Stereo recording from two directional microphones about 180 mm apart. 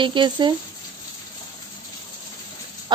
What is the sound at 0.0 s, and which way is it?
Speech, 25° right (ahead or behind).